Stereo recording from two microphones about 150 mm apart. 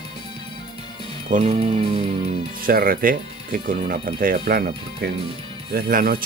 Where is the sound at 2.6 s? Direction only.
75° right (ahead or behind).